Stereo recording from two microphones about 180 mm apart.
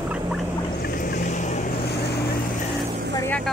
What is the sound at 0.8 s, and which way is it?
Vehicle, 50° left (ahead or behind).